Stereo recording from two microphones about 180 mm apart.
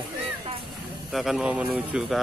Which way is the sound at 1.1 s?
Centre (ahead or behind).